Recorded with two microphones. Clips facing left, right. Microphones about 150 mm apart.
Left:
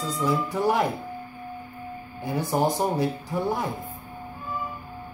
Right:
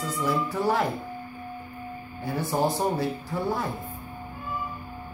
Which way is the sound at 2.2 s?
15° left (ahead or behind).